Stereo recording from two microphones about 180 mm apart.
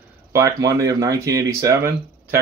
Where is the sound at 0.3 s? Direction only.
15° right (ahead or behind).